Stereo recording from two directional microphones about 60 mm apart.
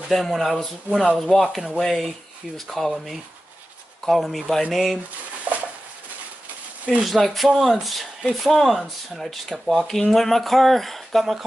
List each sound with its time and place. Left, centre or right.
0.1 s speech: centre
5.5 s a sound: right
7.0 s speech: centre